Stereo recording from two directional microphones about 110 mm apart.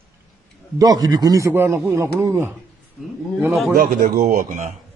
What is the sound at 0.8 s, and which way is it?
Speech, 35° right (ahead or behind).